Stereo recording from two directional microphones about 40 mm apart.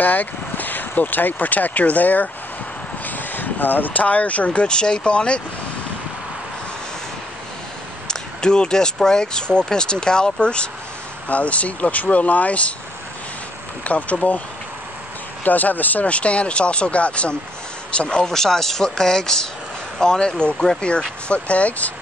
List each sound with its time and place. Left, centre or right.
0.0 s speech: left
4.5 s speech: left
8.1 s speech: left
11.2 s speech: left
13.8 s speech: left
15.4 s speech: left
16.1 s speech: left
18.3 s speech: centre
21.3 s speech: left